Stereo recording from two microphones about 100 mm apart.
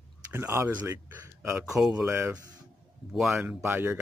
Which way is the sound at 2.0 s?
25° right (ahead or behind).